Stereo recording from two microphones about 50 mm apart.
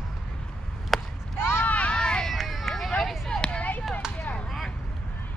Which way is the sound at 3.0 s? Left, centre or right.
Centre.